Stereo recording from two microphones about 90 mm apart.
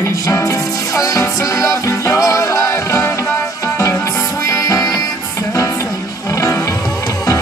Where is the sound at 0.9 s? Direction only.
35° left (ahead or behind).